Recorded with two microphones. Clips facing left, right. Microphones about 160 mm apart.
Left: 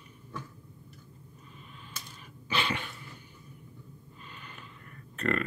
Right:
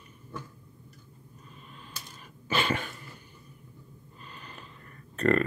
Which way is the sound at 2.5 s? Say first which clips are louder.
Right 3 dB; 45° right (ahead or behind).